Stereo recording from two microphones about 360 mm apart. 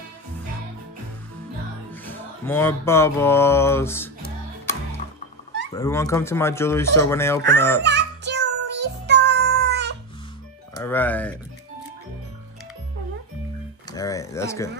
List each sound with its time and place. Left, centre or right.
1.9 s music: centre
5.7 s speech: centre
7.8 s music: right
10.7 s music: centre
13.9 s speech: centre